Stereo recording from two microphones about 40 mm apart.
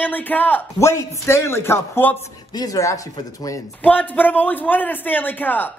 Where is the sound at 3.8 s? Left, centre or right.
Left.